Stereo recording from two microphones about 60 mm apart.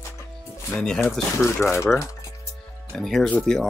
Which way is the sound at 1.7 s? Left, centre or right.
Left.